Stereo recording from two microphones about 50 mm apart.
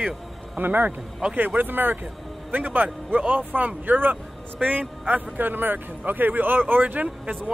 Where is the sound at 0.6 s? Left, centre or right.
Right.